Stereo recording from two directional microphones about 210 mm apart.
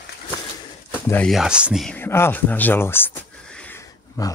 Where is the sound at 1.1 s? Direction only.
Centre (ahead or behind).